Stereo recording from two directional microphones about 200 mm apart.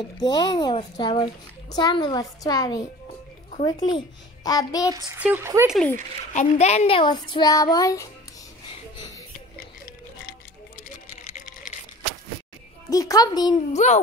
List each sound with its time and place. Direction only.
0.0 s a child's voice: 20° left (ahead or behind)
4.9 s speech: 15° right (ahead or behind)
6.3 s a child's voice: 35° left (ahead or behind); by 8.1 s 15° left (ahead or behind)
12.9 s a child's voice: 20° left (ahead or behind)
13.8 s speech: 35° left (ahead or behind)